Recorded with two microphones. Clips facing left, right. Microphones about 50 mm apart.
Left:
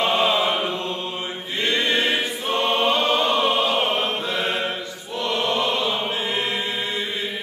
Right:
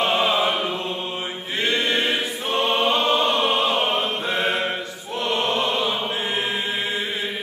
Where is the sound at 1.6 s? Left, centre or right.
Right.